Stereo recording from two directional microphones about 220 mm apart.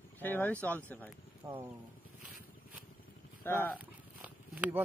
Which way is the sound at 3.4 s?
10° left (ahead or behind).